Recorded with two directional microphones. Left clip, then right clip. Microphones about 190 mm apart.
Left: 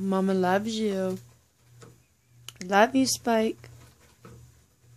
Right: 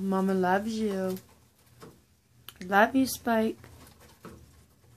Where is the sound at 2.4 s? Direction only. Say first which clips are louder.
Left 2 dB; 25° left (ahead or behind).